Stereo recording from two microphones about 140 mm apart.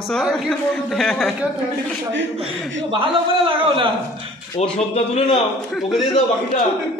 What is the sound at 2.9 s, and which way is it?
Speech, 40° right (ahead or behind).